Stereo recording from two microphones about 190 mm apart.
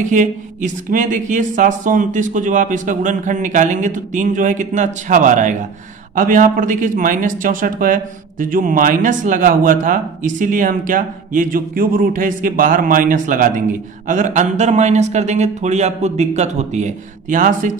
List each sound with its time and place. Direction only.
0.0 s a man's voice: 40° right (ahead or behind)